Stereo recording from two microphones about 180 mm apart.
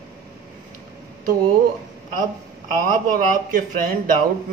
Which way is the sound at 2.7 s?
50° right (ahead or behind).